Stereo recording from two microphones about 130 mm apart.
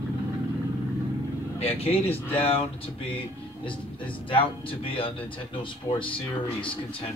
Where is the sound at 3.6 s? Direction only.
40° left (ahead or behind).